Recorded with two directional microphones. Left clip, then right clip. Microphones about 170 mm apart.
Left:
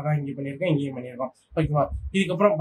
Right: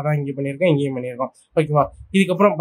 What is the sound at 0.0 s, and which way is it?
Speech, 45° right (ahead or behind).